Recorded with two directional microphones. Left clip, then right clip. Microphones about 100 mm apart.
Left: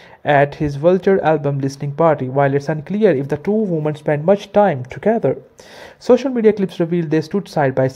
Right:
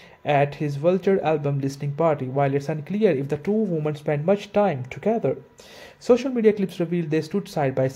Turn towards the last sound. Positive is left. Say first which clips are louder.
# left 7 dB
turn(degrees=35)  # may be behind; listen again after turning